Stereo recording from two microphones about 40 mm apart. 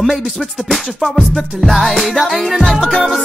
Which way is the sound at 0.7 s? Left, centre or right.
Centre.